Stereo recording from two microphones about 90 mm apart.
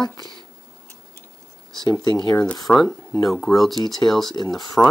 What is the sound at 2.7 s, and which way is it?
Speech, 5° left (ahead or behind).